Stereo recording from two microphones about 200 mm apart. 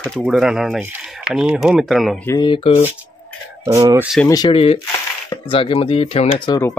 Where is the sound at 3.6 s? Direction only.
15° right (ahead or behind).